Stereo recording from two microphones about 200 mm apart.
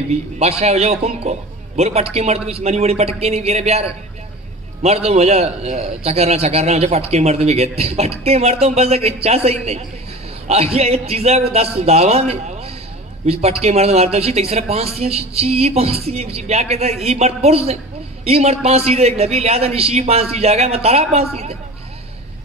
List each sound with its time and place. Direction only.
0.1 s a man's voice: 30° right (ahead or behind)